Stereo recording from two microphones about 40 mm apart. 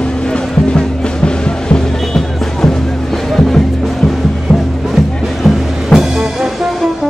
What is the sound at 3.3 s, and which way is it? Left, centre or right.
Music, centre.